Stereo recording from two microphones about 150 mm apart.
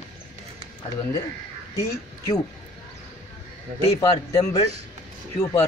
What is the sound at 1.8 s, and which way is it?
Speech, 20° left (ahead or behind).